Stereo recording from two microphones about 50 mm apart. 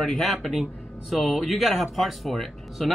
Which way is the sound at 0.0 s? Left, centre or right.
Centre.